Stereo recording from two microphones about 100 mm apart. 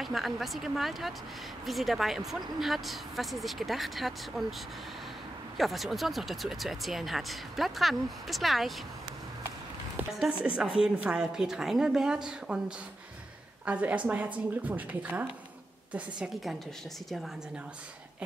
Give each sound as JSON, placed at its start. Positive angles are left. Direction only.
{"t": 0.0, "sound": "speech", "side_deg": 0}
{"t": 5.6, "sound": "speech", "side_deg": 0}
{"t": 10.4, "sound": "a woman's voice", "side_deg": -10}